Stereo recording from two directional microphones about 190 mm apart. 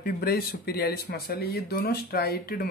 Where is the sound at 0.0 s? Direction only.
55° left (ahead or behind).